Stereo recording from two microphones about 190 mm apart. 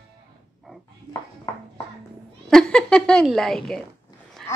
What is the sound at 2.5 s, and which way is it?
A woman's voice, 5° left (ahead or behind).